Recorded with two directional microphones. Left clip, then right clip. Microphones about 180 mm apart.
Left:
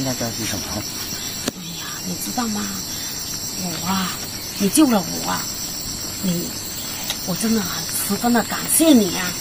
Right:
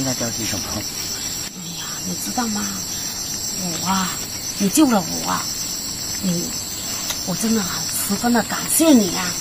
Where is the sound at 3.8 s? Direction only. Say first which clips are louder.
Right 2 dB; centre (ahead or behind).